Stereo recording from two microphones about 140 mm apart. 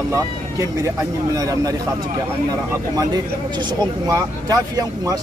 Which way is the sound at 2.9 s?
30° right (ahead or behind).